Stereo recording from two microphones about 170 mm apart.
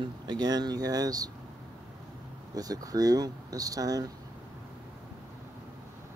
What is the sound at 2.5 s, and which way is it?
Speech, 20° right (ahead or behind).